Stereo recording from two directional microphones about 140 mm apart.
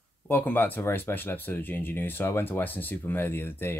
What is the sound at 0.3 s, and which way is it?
Speech, 15° left (ahead or behind).